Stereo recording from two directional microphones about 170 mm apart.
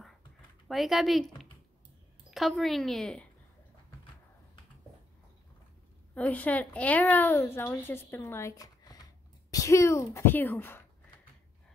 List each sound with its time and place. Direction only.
0.7 s a woman's voice: centre (ahead or behind)
6.1 s a woman's voice: 10° left (ahead or behind)